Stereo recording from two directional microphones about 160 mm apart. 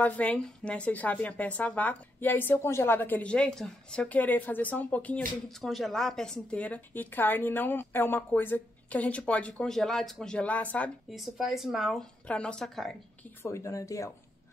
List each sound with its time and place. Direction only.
0.0 s a woman's voice: 10° left (ahead or behind)
13.4 s speech: 20° left (ahead or behind)